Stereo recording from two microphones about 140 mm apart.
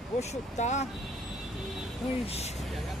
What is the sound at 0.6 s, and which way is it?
Speech, 55° left (ahead or behind).